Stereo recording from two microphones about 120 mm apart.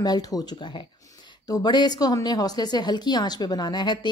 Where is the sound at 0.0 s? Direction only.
35° left (ahead or behind).